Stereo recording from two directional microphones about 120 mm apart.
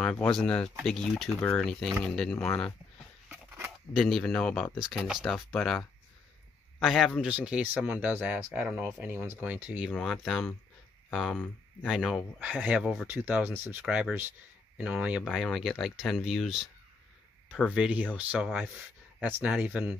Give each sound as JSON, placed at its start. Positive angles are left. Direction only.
{"t": 0.3, "sound": "speech", "side_deg": 5}
{"t": 2.4, "sound": "speech", "side_deg": 15}
{"t": 3.3, "sound": "a sound", "side_deg": -20}
{"t": 3.9, "sound": "a man's voice", "side_deg": 0}
{"t": 9.8, "sound": "speech", "side_deg": 0}
{"t": 15.2, "sound": "speech", "side_deg": 0}
{"t": 17.5, "sound": "speech", "side_deg": 10}
{"t": 17.7, "sound": "speech", "side_deg": -10}